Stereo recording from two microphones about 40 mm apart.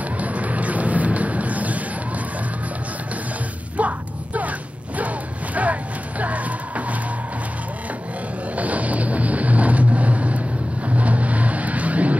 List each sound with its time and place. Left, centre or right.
0.2 s thunder: right
3.7 s a sound: right
8.5 s vehicle: right